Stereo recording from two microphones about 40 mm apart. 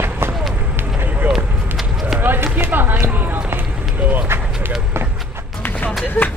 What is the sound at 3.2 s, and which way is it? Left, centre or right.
Run, right.